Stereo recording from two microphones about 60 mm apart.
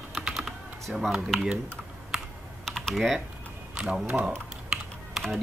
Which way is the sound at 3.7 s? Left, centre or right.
Centre.